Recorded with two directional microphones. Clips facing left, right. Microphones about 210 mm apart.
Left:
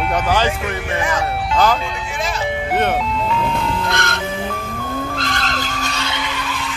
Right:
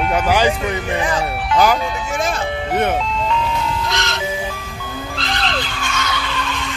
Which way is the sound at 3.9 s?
55° left (ahead or behind).